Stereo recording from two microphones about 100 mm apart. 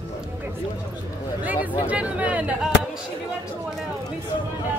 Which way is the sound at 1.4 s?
15° right (ahead or behind).